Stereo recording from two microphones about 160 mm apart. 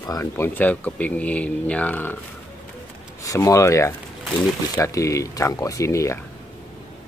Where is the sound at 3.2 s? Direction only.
20° left (ahead or behind).